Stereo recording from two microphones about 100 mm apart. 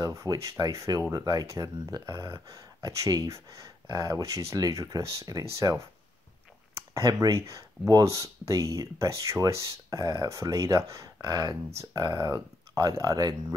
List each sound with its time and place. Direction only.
0.0 s speech: 35° right (ahead or behind)
6.9 s speech: 35° right (ahead or behind)